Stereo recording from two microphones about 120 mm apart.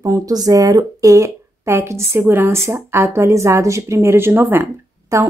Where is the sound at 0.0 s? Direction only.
30° right (ahead or behind).